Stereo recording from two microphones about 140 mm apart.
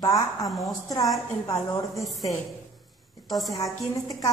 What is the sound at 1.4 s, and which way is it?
Speech, 30° left (ahead or behind).